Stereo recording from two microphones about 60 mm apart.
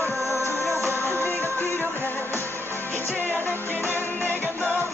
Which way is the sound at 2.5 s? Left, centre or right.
Right.